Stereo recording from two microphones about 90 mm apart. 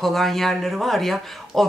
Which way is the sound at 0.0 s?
Centre (ahead or behind).